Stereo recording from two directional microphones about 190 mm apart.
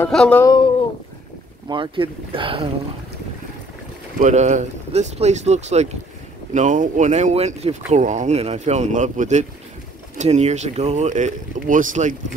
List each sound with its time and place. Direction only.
0.0 s speech: 5° left (ahead or behind)
1.7 s speech: 25° right (ahead or behind)
4.2 s speech: 40° right (ahead or behind)